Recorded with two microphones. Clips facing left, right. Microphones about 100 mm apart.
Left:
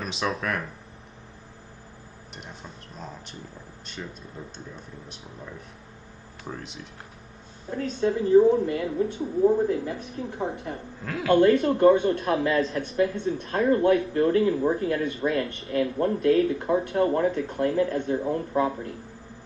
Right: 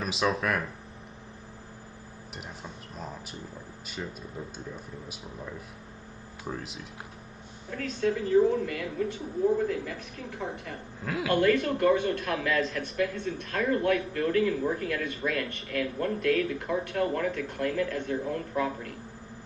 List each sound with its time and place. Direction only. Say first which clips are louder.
0.0 s speech: right 1 dB; centre (ahead or behind)
4.7 s speech: right 1 dB; 5° right (ahead or behind)
6.5 s speech: even; 5° right (ahead or behind)
7.7 s speech: left 3 dB; 30° left (ahead or behind)
11.1 s speech: left 5 dB; 5° right (ahead or behind)
11.3 s speech: left 6 dB; 30° left (ahead or behind)